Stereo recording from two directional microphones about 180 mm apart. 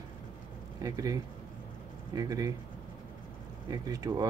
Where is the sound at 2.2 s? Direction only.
20° right (ahead or behind).